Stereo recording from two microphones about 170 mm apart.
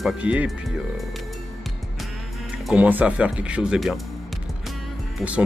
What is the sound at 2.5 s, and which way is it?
Speech, 5° right (ahead or behind).